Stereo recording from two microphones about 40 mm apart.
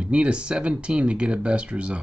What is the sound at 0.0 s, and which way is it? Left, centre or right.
Speech, right.